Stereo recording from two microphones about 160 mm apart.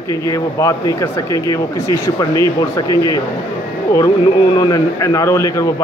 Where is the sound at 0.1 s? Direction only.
20° left (ahead or behind).